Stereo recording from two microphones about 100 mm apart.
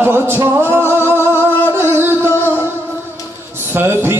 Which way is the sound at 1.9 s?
25° right (ahead or behind).